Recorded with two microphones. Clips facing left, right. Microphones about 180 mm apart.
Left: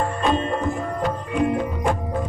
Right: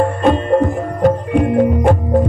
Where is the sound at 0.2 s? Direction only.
55° right (ahead or behind).